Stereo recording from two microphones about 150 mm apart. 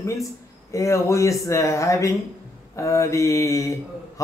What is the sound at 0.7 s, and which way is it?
Speech, 20° left (ahead or behind).